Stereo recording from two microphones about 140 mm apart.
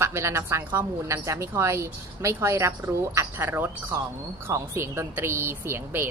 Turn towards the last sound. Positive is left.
turn(degrees=-15)  # may be behind; listen again after turning